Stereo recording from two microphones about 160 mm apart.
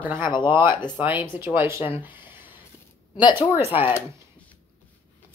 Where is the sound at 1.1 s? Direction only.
30° left (ahead or behind).